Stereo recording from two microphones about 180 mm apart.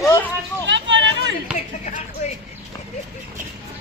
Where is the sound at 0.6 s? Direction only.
80° right.